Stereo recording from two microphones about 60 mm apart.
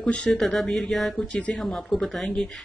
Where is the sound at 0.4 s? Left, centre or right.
Centre.